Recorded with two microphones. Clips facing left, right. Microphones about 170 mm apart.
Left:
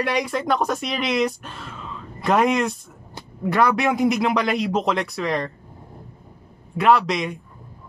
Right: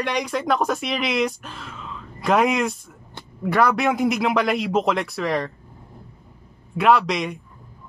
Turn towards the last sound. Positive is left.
turn(degrees=0)  # may be behind; listen again after turning